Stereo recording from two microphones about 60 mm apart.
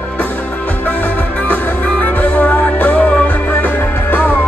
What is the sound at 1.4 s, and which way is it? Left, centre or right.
Music, centre.